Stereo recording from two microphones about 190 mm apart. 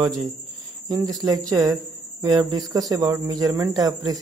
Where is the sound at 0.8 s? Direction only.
20° right (ahead or behind).